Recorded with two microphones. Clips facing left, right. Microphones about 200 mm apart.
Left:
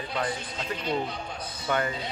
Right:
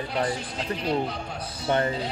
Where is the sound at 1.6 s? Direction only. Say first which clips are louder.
Right 4 dB; 30° right (ahead or behind).